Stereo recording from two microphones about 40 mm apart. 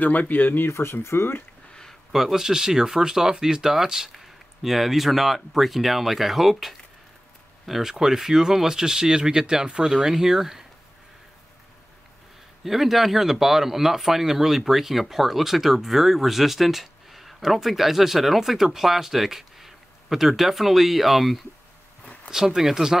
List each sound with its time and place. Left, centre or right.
0.0 s speech: left
0.7 s speech: left
2.1 s speech: centre
12.6 s speech: centre
22.0 s a sound: left
22.3 s speech: centre